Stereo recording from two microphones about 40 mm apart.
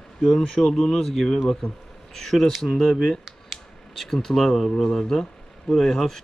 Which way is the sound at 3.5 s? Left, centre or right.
Centre.